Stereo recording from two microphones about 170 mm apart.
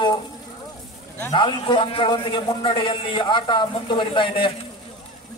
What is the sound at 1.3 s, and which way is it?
A man's voice, 25° left (ahead or behind).